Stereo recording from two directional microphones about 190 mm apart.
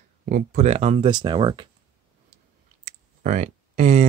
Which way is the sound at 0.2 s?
55° right (ahead or behind).